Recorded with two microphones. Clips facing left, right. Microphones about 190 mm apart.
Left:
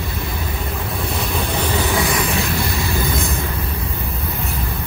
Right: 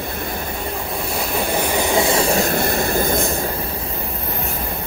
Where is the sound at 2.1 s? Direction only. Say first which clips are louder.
Right 3 dB; 30° right (ahead or behind).